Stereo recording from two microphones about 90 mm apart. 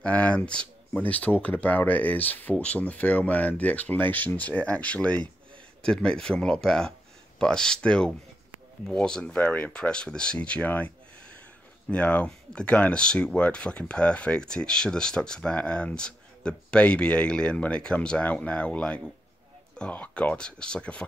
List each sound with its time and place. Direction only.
0.0 s speech: 15° left (ahead or behind)
11.9 s speech: 15° left (ahead or behind)